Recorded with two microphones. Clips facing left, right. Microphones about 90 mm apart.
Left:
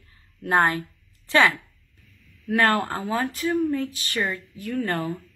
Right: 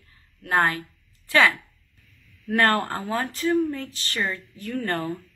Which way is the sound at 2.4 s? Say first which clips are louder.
Even; 5° left (ahead or behind).